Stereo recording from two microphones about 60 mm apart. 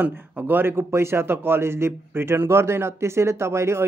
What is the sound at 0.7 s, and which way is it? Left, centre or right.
Speech, right.